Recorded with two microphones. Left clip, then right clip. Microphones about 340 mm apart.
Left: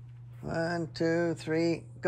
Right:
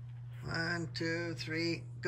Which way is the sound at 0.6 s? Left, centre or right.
Centre.